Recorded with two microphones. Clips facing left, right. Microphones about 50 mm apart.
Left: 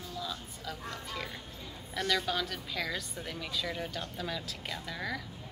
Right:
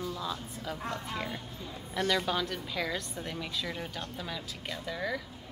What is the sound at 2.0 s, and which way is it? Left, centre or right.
Speech, centre.